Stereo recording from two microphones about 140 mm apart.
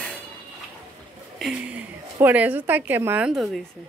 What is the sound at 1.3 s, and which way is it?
A woman's voice, 5° right (ahead or behind).